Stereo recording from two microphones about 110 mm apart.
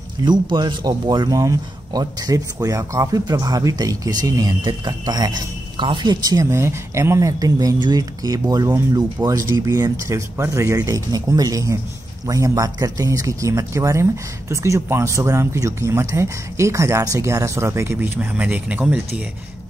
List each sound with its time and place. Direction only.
0.2 s speech: 40° right (ahead or behind); by 19.2 s 10° right (ahead or behind)